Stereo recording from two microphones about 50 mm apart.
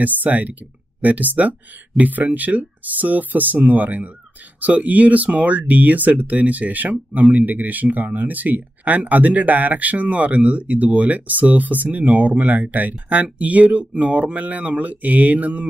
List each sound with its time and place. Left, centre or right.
0.0 s speech: right